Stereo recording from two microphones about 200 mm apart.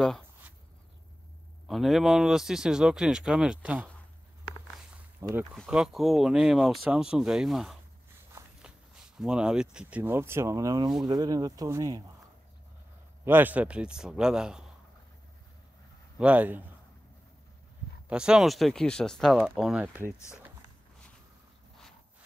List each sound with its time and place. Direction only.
1.7 s speech: centre (ahead or behind)
5.5 s speech: 5° right (ahead or behind)
9.2 s speech: 5° right (ahead or behind)
13.2 s speech: 10° right (ahead or behind)
16.2 s speech: 5° right (ahead or behind)
18.0 s speech: 5° right (ahead or behind)